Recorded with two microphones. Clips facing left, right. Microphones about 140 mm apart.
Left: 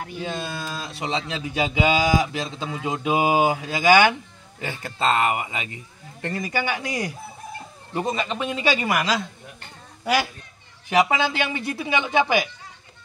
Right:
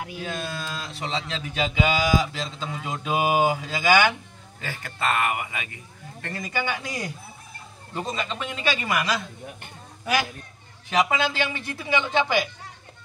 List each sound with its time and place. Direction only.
0.2 s a man's voice: 15° left (ahead or behind)
10.9 s a man's voice: 15° left (ahead or behind)